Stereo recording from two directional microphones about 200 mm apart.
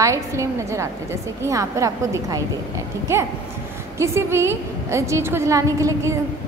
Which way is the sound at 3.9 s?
15° right (ahead or behind).